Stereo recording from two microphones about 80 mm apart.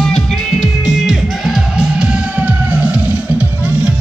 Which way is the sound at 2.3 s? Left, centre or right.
Right.